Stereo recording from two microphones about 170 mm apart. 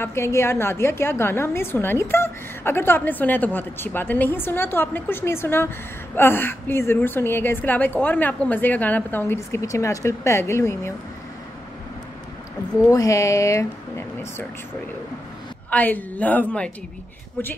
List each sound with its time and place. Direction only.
0.0 s a woman's voice: 15° left (ahead or behind)
12.8 s a woman's voice: 20° left (ahead or behind)
15.7 s a woman's voice: 10° left (ahead or behind)